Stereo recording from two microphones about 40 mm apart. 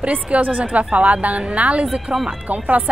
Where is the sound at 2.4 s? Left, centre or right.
Right.